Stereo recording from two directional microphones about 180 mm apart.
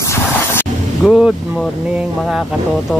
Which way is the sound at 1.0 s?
Centre (ahead or behind).